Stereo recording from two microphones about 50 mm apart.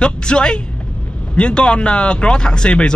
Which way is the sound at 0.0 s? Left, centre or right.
Centre.